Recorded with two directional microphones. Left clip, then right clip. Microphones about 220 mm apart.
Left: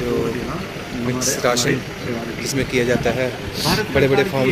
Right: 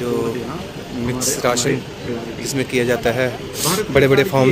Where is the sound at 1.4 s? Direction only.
10° right (ahead or behind).